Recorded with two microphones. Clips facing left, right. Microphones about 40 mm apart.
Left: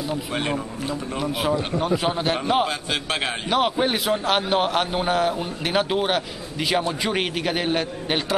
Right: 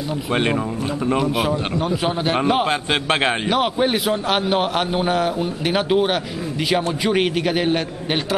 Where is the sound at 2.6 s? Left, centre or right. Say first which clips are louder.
Right 5 dB; right.